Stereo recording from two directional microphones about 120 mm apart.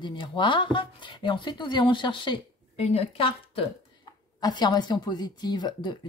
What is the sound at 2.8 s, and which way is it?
Speech, 55° left (ahead or behind).